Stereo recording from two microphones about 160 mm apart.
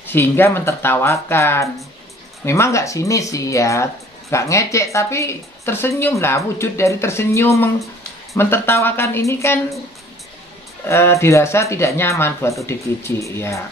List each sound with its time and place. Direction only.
0.0 s speech: 15° left (ahead or behind)
10.9 s speech: 15° left (ahead or behind)